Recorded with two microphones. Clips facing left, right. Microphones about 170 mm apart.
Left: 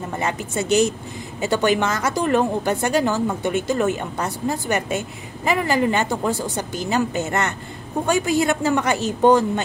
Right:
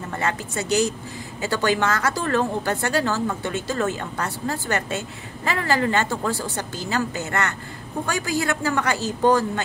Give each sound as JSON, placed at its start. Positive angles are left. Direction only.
{"t": 0.2, "sound": "a man's voice", "side_deg": 20}